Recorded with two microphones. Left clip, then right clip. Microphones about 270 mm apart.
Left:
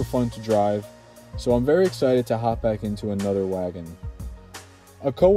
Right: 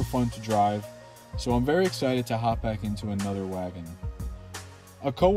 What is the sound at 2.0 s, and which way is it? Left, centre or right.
Speech, right.